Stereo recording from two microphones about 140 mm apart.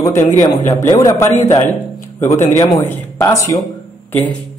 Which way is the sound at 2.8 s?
20° left (ahead or behind).